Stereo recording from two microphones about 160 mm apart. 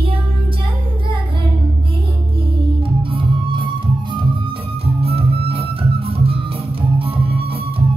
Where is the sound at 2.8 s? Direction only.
35° right (ahead or behind).